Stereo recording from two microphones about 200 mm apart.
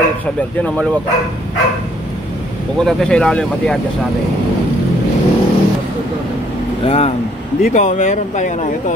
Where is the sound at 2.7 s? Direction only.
5° left (ahead or behind).